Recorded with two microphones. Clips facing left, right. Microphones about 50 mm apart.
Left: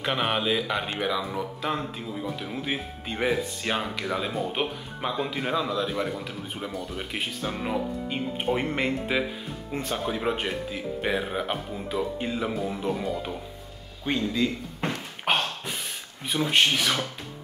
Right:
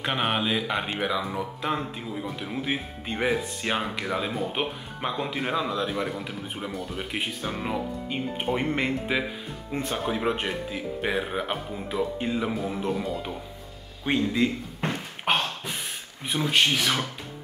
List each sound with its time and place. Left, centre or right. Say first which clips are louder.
0.0 s speech: even; centre
14.0 s speech: right 2 dB; centre
14.8 s a sound: left 1 dB; centre
16.3 s speech: even; centre